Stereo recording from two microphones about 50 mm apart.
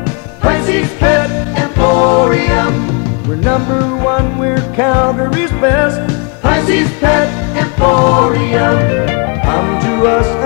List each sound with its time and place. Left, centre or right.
0.4 s music: centre